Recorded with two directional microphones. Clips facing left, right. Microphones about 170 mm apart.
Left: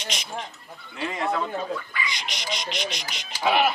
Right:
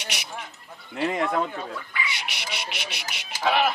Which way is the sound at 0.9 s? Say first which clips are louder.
Right 5 dB; 55° right (ahead or behind).